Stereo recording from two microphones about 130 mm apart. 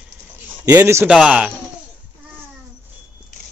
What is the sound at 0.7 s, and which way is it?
Speech, 20° right (ahead or behind).